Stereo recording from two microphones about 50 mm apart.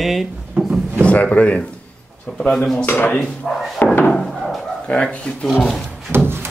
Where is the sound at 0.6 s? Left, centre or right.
Right.